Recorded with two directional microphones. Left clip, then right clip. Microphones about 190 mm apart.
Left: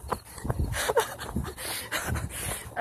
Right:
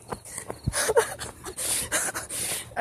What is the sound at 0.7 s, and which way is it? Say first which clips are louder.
Dog: right 3 dB; 20° right (ahead or behind).